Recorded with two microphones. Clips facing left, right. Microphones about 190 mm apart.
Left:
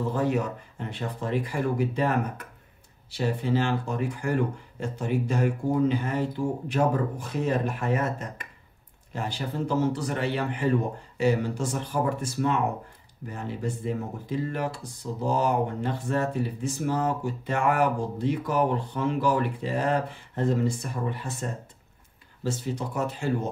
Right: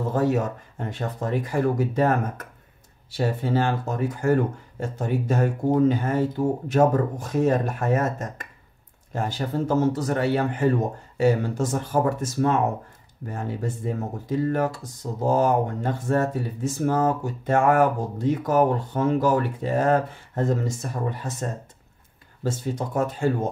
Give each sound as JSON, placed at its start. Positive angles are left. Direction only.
{"t": 0.0, "sound": "speech", "side_deg": -45}